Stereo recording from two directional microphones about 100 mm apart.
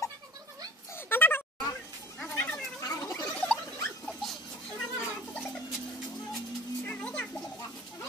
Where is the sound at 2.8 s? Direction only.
40° left (ahead or behind).